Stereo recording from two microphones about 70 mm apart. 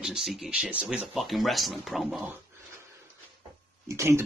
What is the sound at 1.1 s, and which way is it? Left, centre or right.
Speech, centre.